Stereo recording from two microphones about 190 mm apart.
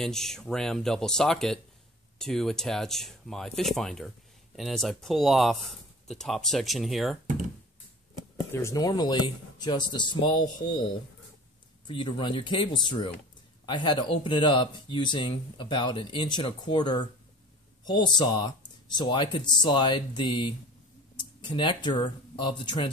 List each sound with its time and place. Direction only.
0.0 s speech: centre (ahead or behind)
8.5 s speech: 15° left (ahead or behind)
11.9 s speech: 25° left (ahead or behind)